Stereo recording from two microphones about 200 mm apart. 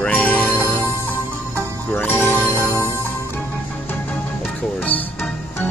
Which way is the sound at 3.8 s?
10° left (ahead or behind).